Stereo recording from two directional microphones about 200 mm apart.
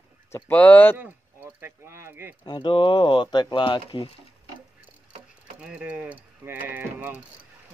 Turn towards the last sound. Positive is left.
turn(degrees=-10)  # may be behind; listen again after turning